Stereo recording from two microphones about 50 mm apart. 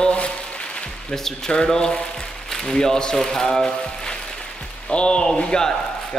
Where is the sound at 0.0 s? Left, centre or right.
Left.